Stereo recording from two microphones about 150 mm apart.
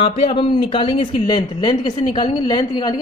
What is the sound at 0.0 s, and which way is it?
A woman's voice, 40° left (ahead or behind).